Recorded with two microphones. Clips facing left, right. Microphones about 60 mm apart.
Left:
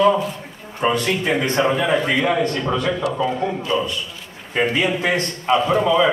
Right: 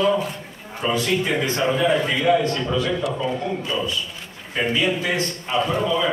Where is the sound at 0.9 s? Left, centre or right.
Left.